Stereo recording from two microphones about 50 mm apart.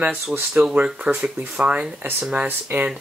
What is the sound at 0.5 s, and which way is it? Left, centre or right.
Speech, centre.